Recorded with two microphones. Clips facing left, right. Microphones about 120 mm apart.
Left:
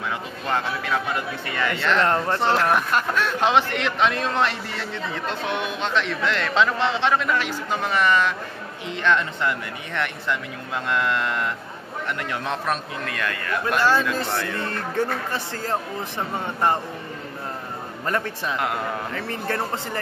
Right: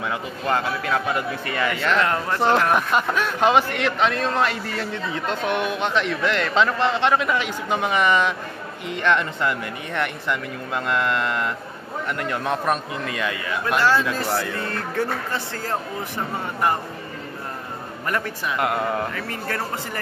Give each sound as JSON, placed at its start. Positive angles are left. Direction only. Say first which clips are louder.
{"t": 0.5, "sound": "a man's voice", "louder": "right 2 dB", "side_deg": -5}
{"t": 2.0, "sound": "speech", "louder": "left 2 dB", "side_deg": 25}
{"t": 2.4, "sound": "a man's voice", "louder": "right 4 dB", "side_deg": -15}
{"t": 14.7, "sound": "speech", "louder": "left 1 dB", "side_deg": 15}
{"t": 18.6, "sound": "a man's voice", "louder": "right 6 dB", "side_deg": -5}
{"t": 19.1, "sound": "speech", "louder": "left 1 dB", "side_deg": 25}